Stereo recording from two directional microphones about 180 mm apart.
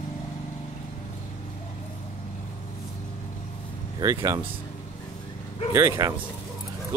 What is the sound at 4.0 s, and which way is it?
Speech, 20° right (ahead or behind).